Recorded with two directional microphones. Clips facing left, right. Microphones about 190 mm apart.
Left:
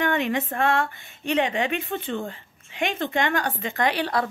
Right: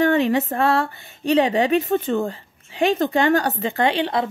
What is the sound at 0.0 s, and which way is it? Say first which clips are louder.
Speech: right 6 dB; 35° right (ahead or behind).